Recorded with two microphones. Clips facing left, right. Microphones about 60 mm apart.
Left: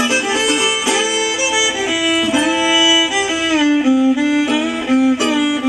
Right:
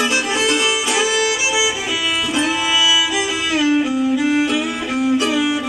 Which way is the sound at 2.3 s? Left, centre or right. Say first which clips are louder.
Left 2 dB; centre.